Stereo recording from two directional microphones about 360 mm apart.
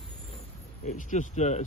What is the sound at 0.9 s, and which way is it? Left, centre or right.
Speech, left.